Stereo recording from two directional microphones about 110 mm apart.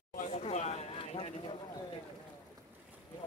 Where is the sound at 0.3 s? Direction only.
80° left.